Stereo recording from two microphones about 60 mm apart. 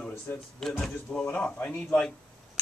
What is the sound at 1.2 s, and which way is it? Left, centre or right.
Speech, left.